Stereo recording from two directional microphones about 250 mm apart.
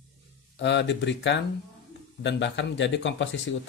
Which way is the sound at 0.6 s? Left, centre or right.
Left.